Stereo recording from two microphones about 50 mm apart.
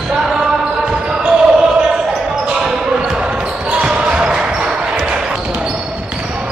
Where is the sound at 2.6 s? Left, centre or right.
Centre.